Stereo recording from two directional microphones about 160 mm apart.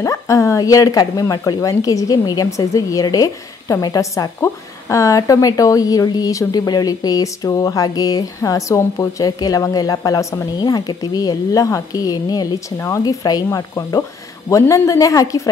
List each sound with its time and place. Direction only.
0.0 s speech: 20° left (ahead or behind)